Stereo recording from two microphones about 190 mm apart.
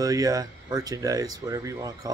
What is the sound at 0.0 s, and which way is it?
Speech, 20° right (ahead or behind).